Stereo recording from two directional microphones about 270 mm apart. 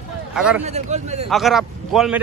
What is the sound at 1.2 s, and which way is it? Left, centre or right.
Speech, centre.